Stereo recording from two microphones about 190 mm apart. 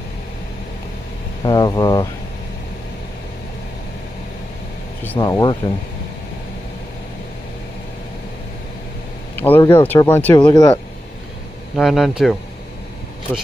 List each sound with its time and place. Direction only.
1.4 s speech: 20° left (ahead or behind)
5.2 s speech: 20° left (ahead or behind)
9.3 s speech: 10° left (ahead or behind)
11.7 s speech: centre (ahead or behind)